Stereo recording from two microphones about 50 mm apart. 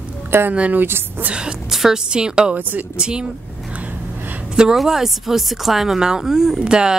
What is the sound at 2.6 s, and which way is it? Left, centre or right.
Speech, right.